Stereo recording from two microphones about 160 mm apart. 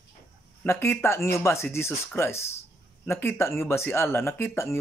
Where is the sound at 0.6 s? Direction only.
15° left (ahead or behind).